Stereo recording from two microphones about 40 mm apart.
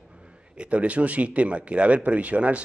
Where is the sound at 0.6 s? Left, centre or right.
Right.